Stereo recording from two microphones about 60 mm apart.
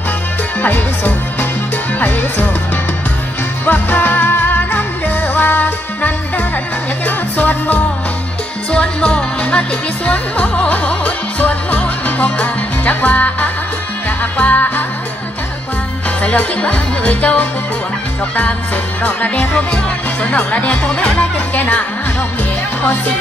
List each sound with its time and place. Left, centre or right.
0.6 s music: left
2.0 s speech: left
3.6 s music: left
16.2 s speech: left
19.0 s speech: left